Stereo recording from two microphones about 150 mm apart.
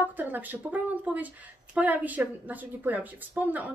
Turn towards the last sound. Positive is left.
turn(degrees=-10)  # may be behind; listen again after turning